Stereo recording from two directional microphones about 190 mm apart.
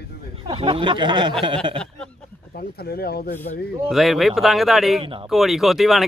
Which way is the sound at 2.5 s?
55° left (ahead or behind).